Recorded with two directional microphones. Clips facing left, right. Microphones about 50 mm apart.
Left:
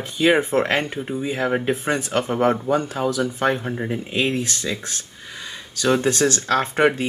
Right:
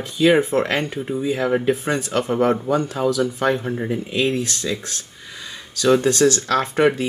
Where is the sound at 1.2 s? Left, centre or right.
Left.